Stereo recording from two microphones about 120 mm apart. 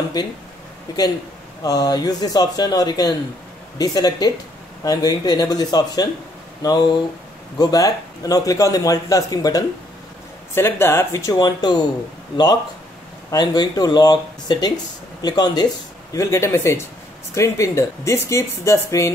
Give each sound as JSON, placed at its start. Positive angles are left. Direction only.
{"t": 0.9, "sound": "a man's voice", "side_deg": 35}
{"t": 10.5, "sound": "a man's voice", "side_deg": 20}
{"t": 11.3, "sound": "speech", "side_deg": 35}
{"t": 13.3, "sound": "a man's voice", "side_deg": 35}